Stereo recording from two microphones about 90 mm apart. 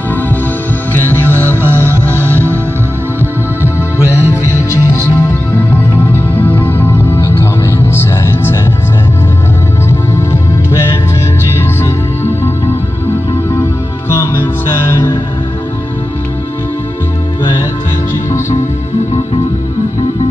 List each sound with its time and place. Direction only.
0.9 s music: 25° left (ahead or behind)
3.6 s music: 30° left (ahead or behind)
6.1 s music: 25° left (ahead or behind)
13.6 s music: 30° left (ahead or behind)